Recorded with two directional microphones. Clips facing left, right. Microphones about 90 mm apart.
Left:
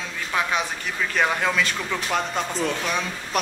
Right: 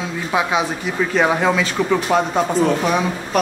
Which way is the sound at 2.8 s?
15° right (ahead or behind).